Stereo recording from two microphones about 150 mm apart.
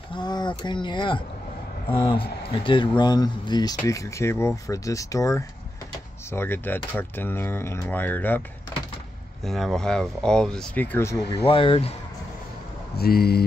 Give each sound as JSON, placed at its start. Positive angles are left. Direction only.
{"t": 0.1, "sound": "speech", "side_deg": 30}
{"t": 9.4, "sound": "speech", "side_deg": 0}
{"t": 11.4, "sound": "speech", "side_deg": 35}
{"t": 12.9, "sound": "speech", "side_deg": 90}